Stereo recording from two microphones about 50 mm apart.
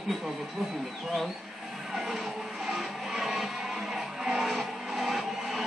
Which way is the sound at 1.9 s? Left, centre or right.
Centre.